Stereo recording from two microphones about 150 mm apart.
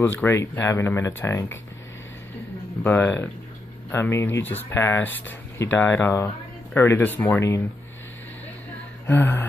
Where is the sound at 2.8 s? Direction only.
10° left (ahead or behind).